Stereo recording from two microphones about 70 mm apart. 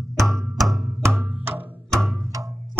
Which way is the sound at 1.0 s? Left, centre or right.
Right.